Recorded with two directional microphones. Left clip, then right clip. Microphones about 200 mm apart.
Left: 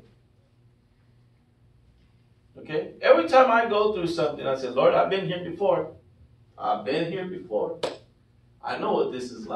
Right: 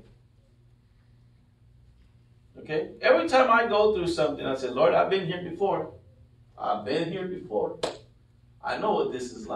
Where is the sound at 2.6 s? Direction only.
15° right (ahead or behind).